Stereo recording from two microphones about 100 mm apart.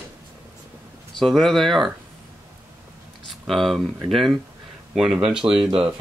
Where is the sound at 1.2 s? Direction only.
5° left (ahead or behind).